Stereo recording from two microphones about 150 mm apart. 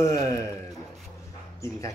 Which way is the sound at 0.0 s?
20° left (ahead or behind).